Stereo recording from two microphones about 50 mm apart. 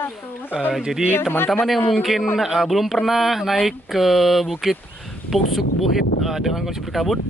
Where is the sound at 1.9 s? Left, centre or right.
Centre.